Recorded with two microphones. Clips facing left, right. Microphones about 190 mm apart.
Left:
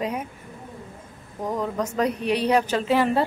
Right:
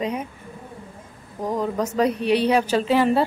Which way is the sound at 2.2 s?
30° right (ahead or behind).